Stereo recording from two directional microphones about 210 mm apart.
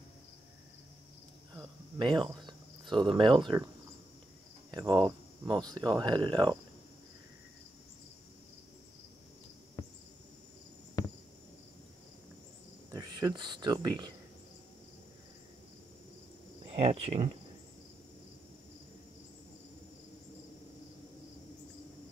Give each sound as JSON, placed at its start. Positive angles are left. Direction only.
{"t": 2.0, "sound": "speech", "side_deg": -20}
{"t": 4.6, "sound": "speech", "side_deg": -20}
{"t": 11.0, "sound": "a sound", "side_deg": 15}
{"t": 12.9, "sound": "speech", "side_deg": -20}
{"t": 16.6, "sound": "speech", "side_deg": -30}